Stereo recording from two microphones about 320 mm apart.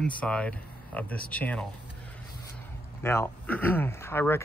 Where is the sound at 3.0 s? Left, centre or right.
Centre.